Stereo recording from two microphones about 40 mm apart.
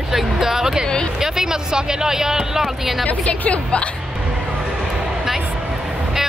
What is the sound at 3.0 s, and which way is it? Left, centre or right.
Speech, left.